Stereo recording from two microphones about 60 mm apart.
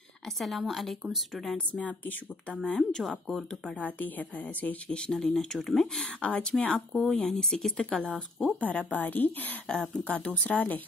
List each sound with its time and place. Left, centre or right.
0.2 s a woman's voice: centre
1.7 s a woman's voice: left
2.6 s speech: centre
3.7 s a woman's voice: left
4.9 s speech: centre
5.9 s a woman's voice: centre
7.2 s a woman's voice: centre
8.5 s a woman's voice: left